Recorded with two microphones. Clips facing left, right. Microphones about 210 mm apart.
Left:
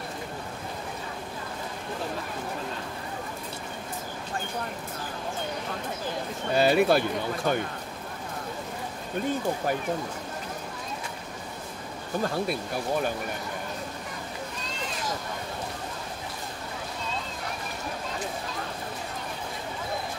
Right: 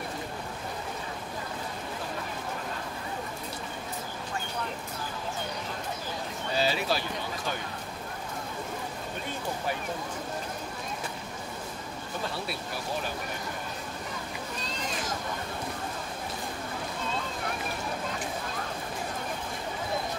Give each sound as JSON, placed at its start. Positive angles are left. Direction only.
{"t": 6.5, "sound": "speech", "side_deg": 55}